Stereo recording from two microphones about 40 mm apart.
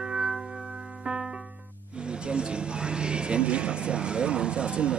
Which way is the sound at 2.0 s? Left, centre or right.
Right.